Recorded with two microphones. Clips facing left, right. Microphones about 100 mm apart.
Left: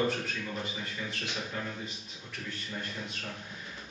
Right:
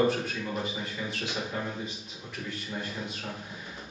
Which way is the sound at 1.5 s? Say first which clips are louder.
Right 3 dB; 15° right (ahead or behind).